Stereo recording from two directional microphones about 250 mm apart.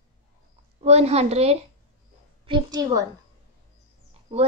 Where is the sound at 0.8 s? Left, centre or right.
Right.